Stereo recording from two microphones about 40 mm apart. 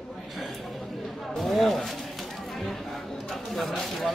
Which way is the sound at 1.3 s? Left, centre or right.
Centre.